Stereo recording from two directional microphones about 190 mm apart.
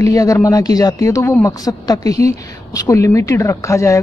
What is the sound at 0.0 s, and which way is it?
Speech, 15° left (ahead or behind).